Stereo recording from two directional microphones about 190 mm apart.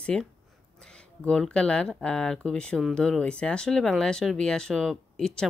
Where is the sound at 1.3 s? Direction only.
5° left (ahead or behind).